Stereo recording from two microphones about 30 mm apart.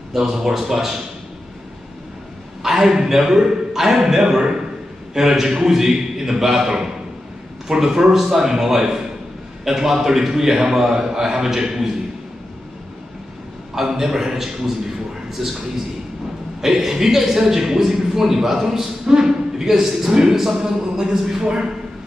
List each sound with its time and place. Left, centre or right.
0.3 s a man's voice: centre
2.6 s a man's voice: centre
13.7 s a man's voice: centre